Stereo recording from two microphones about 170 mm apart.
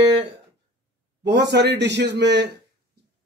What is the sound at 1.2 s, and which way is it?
Speech, 85° right.